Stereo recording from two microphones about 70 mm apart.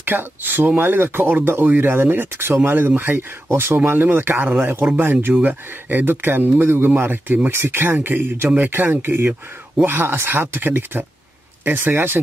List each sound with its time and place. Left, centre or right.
0.0 s speech: right